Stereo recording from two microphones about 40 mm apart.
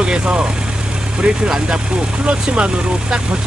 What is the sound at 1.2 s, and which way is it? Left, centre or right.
Speech, right.